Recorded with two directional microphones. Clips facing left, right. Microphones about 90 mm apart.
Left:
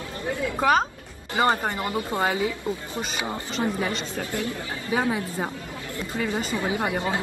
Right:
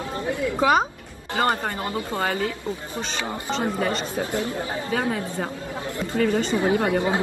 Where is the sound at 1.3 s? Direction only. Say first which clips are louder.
Left 1 dB; 20° left (ahead or behind).